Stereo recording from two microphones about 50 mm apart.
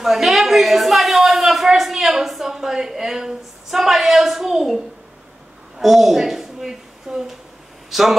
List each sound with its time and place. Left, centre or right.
0.0 s a woman's voice: centre